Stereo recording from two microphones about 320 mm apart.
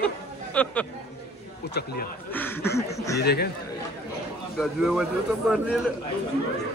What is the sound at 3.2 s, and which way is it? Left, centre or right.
Speech, left.